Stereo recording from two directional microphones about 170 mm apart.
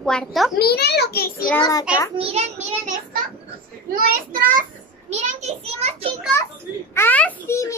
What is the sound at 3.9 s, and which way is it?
Speech, 60° right (ahead or behind).